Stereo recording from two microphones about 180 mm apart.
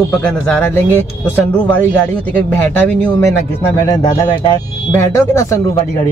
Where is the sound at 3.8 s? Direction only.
20° left (ahead or behind).